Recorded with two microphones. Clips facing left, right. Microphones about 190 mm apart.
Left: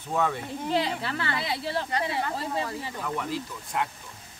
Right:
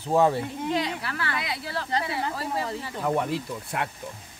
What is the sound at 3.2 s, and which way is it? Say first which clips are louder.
Speech: right 3 dB; 65° right (ahead or behind).